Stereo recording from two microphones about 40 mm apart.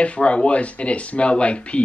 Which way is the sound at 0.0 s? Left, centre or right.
Left.